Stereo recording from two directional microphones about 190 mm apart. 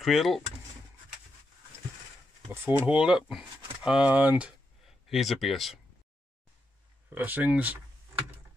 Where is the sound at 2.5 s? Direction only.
10° right (ahead or behind).